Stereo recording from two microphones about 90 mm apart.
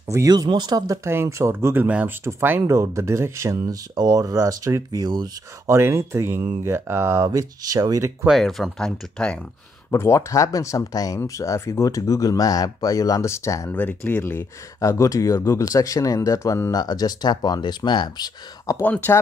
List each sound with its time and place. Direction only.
0.5 s speech: 50° right (ahead or behind)
1.0 s speech: 30° right (ahead or behind)
1.9 s speech: 15° right (ahead or behind)
2.6 s speech: 35° right (ahead or behind)
5.7 s speech: 30° right (ahead or behind)
7.2 s speech: 40° right (ahead or behind)
8.3 s speech: centre (ahead or behind)
9.8 s speech: 30° left (ahead or behind)
13.7 s speech: 20° left (ahead or behind); by 18.3 s 55° left (ahead or behind)
18.8 s speech: 20° left (ahead or behind)